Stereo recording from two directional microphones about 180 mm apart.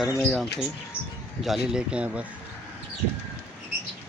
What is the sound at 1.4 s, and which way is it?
Speech, centre (ahead or behind).